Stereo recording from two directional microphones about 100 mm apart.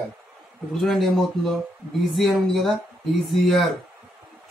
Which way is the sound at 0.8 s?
Centre (ahead or behind).